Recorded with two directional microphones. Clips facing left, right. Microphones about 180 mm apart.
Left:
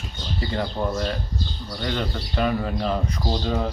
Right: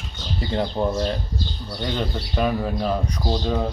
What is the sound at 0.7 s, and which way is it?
Speech, 20° right (ahead or behind).